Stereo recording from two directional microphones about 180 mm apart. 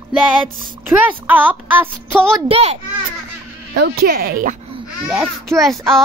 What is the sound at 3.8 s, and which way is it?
Speech, 55° right (ahead or behind).